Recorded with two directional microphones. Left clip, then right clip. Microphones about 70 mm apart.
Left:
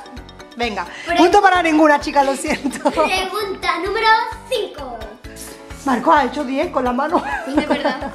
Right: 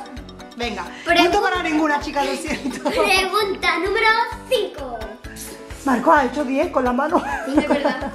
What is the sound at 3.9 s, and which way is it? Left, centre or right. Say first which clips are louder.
Music: left 5 dB; centre.